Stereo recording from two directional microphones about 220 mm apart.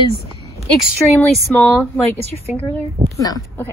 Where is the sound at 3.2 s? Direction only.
15° left (ahead or behind).